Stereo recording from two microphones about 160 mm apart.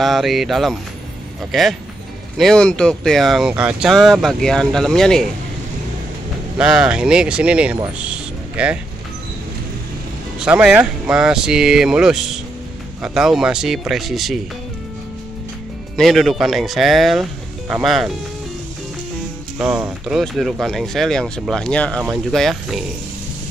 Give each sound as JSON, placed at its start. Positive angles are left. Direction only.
{"t": 0.0, "sound": "speech", "side_deg": 0}
{"t": 6.6, "sound": "speech", "side_deg": -5}
{"t": 8.0, "sound": "music", "side_deg": -5}
{"t": 10.4, "sound": "speech", "side_deg": -5}
{"t": 16.0, "sound": "speech", "side_deg": 0}
{"t": 19.6, "sound": "speech", "side_deg": -5}